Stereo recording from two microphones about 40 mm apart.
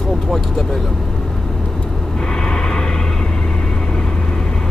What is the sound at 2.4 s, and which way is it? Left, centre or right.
Vehicle, left.